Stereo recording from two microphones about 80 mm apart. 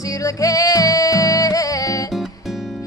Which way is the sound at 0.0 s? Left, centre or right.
Left.